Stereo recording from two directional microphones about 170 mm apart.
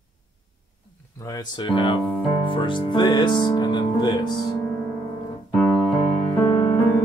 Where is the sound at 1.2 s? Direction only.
25° left (ahead or behind).